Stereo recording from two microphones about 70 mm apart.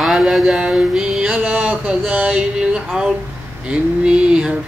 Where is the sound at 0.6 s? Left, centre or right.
Centre.